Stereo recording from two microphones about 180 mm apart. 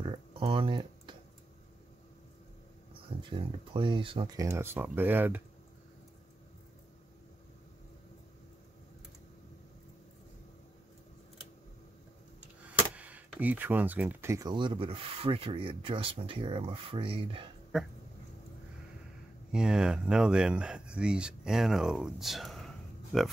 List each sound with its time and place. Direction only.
0.0 s a sound: 30° right (ahead or behind)
2.9 s speech: 30° right (ahead or behind); by 5.4 s 10° right (ahead or behind)
12.4 s speech: 10° right (ahead or behind); by 17.5 s 30° right (ahead or behind)
17.7 s speech: centre (ahead or behind)
19.5 s speech: 5° right (ahead or behind)